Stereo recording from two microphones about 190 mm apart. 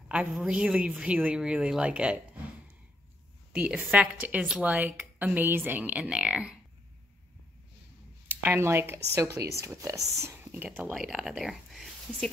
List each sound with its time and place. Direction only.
0.1 s speech: 5° right (ahead or behind)
3.5 s a woman's voice: 5° right (ahead or behind)
8.3 s a woman's voice: 10° right (ahead or behind)